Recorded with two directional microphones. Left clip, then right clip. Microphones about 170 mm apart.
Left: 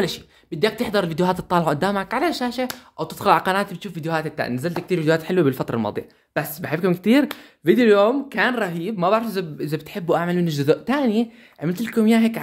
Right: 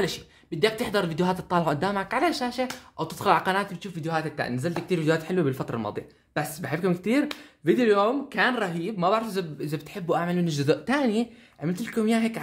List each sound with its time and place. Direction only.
0.0 s speech: 30° left (ahead or behind)
11.6 s speech: 50° left (ahead or behind)